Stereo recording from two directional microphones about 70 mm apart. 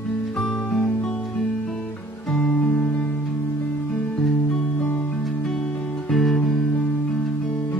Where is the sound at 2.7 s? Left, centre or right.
Left.